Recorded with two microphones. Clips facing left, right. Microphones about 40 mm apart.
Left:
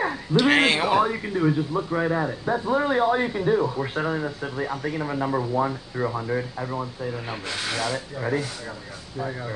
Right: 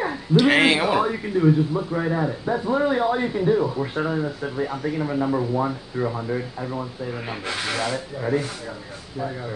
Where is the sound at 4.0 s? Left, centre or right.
Centre.